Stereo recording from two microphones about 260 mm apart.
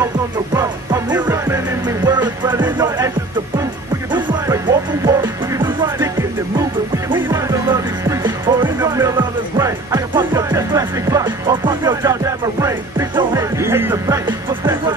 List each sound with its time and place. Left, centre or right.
0.6 s music: centre
4.1 s music: centre
7.2 s music: centre